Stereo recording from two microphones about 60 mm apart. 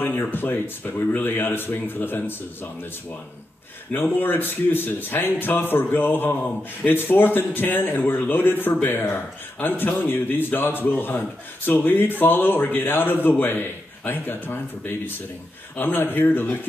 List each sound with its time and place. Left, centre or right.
0.0 s a man's voice: left
3.9 s a man's voice: left